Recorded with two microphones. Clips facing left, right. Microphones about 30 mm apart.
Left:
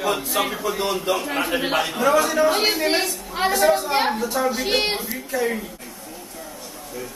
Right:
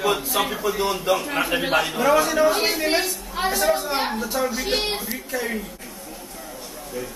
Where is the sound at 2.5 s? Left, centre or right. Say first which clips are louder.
Left 2 dB; centre.